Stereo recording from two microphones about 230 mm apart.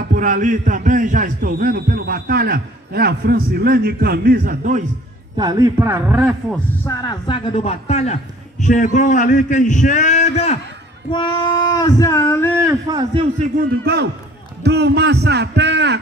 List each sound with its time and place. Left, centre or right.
0.1 s a man's voice: right
5.4 s a man's voice: centre
6.5 s speech: centre; by 10.6 s left
11.1 s child singing: centre
12.6 s a man's voice: centre
14.6 s a man's voice: right